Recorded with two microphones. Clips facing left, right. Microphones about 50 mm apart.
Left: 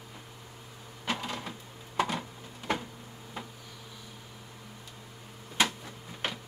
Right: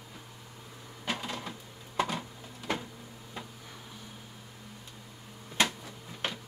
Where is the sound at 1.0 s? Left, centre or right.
Centre.